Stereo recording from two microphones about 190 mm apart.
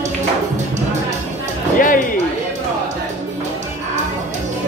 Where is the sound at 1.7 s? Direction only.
45° left (ahead or behind).